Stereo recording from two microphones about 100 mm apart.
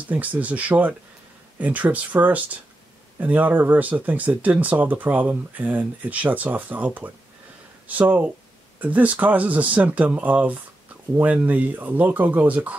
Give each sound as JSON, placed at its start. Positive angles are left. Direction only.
{"t": 0.1, "sound": "speech", "side_deg": -15}